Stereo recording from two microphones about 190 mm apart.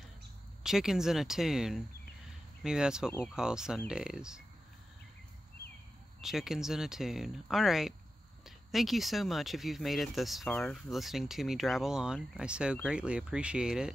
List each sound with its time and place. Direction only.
0.7 s speech: centre (ahead or behind)
6.2 s speech: centre (ahead or behind)